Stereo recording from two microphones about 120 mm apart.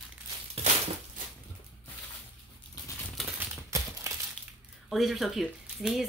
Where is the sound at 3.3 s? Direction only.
25° right (ahead or behind).